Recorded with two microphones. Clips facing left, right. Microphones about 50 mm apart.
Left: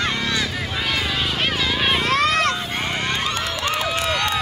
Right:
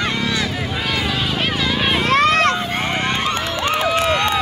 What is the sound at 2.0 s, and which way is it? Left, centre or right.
Run, right.